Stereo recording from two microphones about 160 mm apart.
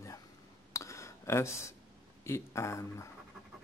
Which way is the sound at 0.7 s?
20° left (ahead or behind).